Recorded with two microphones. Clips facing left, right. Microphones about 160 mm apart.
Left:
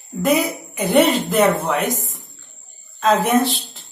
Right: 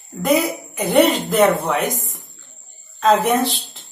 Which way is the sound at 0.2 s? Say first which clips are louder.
Even; centre (ahead or behind).